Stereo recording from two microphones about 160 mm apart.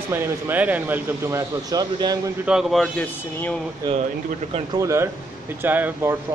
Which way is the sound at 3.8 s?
25° right (ahead or behind).